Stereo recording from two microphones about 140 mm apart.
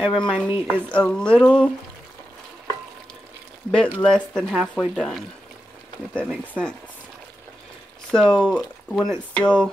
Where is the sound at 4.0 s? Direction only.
5° left (ahead or behind).